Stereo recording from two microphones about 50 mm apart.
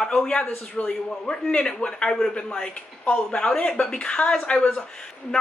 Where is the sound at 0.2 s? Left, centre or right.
Centre.